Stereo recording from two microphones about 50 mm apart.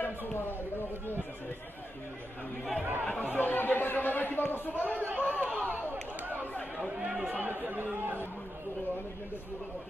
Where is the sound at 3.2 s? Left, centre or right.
Left.